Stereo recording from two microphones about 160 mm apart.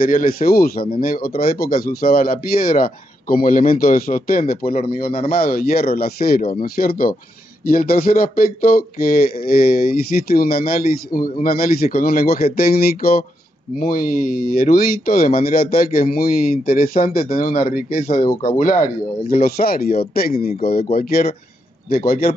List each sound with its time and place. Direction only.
0.0 s speech: 60° left (ahead or behind)
13.7 s speech: 60° left (ahead or behind)